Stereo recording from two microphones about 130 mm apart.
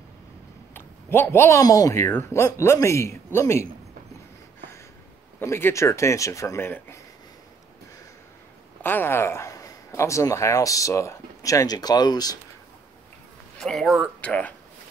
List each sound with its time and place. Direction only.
0.7 s speech: 15° left (ahead or behind)
5.4 s speech: 20° left (ahead or behind)
8.8 s speech: 15° left (ahead or behind); by 12.4 s 30° left (ahead or behind)
13.6 s a man's voice: centre (ahead or behind)